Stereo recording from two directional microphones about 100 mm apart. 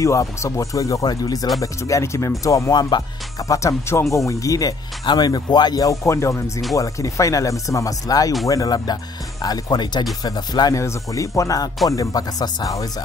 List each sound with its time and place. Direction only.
0.0 s speech: 30° left (ahead or behind)
10.8 s speech: 30° left (ahead or behind)